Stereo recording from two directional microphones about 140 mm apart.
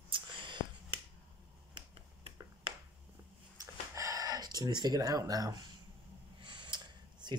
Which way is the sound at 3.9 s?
25° right (ahead or behind).